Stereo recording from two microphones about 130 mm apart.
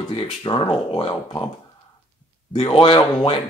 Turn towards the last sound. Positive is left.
turn(degrees=40)  # may be behind; listen again after turning